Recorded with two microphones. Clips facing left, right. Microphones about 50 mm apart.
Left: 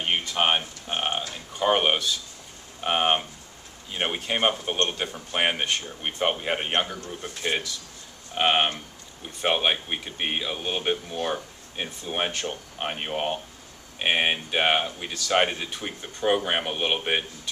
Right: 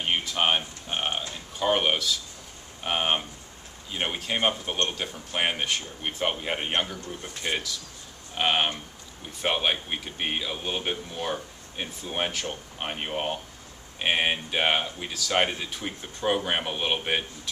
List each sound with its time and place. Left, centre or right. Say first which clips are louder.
0.2 s speech: left 1 dB; centre